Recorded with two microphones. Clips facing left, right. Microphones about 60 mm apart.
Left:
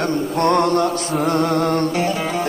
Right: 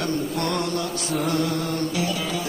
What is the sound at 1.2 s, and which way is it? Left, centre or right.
Music, left.